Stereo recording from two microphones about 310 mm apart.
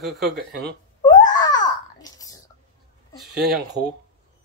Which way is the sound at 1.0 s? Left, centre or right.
Centre.